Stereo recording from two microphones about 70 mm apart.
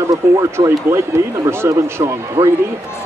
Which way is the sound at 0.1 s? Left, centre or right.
Right.